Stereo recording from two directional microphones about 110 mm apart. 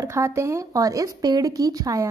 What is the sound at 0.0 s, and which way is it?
A woman's voice, 25° right (ahead or behind).